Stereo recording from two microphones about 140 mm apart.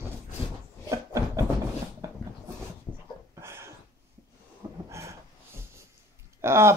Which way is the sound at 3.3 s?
20° right (ahead or behind).